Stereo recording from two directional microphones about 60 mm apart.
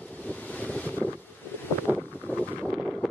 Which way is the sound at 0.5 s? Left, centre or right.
Left.